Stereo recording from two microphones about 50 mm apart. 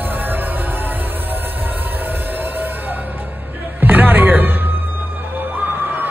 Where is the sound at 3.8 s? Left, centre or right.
Right.